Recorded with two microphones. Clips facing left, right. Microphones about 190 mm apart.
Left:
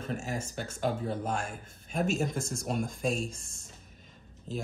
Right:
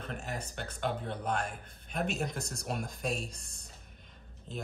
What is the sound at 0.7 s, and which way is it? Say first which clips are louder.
Speech: left 4 dB; 45° left (ahead or behind).